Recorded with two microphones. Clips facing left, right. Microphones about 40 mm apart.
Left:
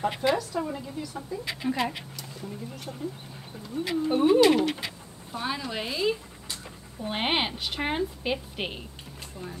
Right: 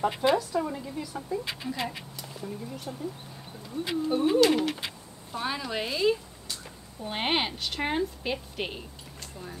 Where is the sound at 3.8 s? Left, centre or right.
Left.